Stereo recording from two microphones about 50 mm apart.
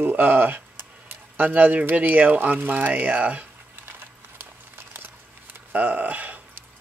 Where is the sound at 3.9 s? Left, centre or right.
Right.